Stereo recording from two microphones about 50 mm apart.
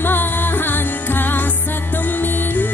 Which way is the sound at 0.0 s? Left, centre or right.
Left.